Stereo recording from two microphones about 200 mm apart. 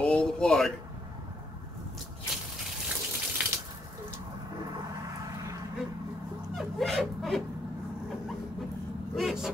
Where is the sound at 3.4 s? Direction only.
5° right (ahead or behind).